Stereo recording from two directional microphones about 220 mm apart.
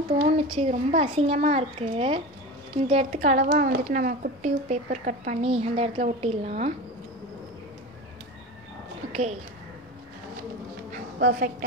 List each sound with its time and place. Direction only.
0.2 s a child's voice: 30° right (ahead or behind)
9.1 s speech: 30° right (ahead or behind)
10.9 s dog: 40° right (ahead or behind)